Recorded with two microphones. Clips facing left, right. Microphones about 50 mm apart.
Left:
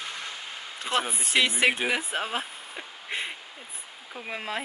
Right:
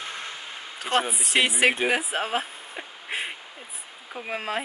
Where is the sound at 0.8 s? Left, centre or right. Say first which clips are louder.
Right 3 dB; centre.